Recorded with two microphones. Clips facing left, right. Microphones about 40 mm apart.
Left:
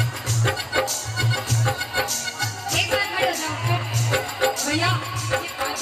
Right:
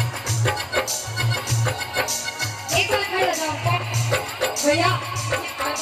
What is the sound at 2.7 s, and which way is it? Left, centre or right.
Music, centre.